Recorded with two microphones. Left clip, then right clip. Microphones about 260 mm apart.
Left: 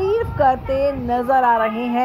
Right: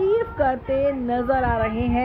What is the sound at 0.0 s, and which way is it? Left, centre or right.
Speech, centre.